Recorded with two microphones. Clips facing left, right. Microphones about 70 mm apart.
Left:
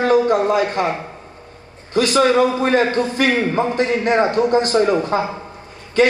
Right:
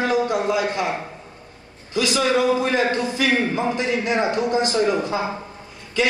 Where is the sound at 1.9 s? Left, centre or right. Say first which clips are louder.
Left 5 dB; left.